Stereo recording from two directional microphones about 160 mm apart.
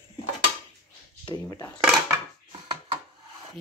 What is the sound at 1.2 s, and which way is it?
Speech, 25° left (ahead or behind).